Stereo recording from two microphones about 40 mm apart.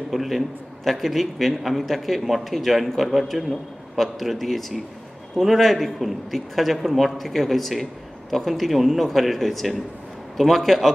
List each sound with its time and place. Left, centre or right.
0.1 s a man's voice: centre